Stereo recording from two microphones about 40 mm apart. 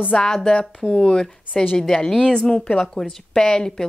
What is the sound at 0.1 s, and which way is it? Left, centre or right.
Speech, centre.